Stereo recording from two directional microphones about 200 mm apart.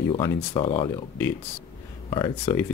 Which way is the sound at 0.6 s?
25° left (ahead or behind).